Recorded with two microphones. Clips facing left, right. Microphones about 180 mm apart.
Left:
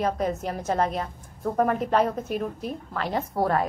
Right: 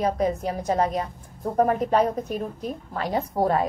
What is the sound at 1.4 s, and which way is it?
Speech, 40° right (ahead or behind).